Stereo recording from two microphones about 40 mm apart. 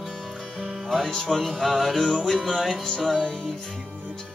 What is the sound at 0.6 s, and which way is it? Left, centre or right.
Music, centre.